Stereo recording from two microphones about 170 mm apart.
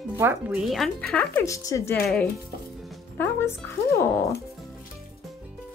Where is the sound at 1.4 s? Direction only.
20° left (ahead or behind).